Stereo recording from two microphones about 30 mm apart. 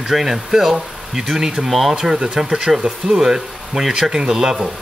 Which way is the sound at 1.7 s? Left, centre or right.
Centre.